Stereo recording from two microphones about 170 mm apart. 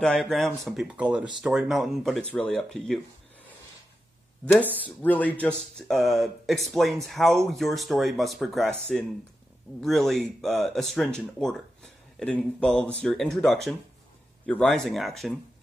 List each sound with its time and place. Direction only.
0.0 s speech: 5° left (ahead or behind)
4.8 s speech: 10° left (ahead or behind)